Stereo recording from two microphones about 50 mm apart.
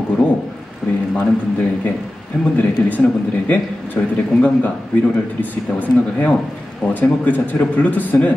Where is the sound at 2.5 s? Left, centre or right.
Left.